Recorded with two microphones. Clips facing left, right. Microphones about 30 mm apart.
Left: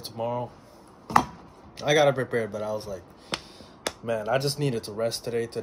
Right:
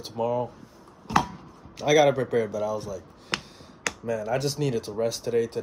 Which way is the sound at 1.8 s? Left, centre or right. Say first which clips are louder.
Right 1 dB; centre.